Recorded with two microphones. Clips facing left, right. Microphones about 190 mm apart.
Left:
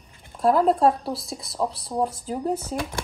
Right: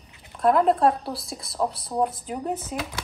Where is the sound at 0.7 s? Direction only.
25° left (ahead or behind).